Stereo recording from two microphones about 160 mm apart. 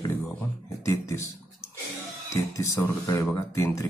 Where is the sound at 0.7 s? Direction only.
20° left (ahead or behind).